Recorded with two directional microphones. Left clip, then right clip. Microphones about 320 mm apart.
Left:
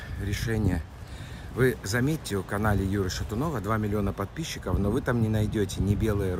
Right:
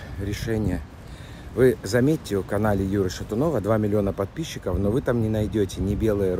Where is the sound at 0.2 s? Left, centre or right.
Centre.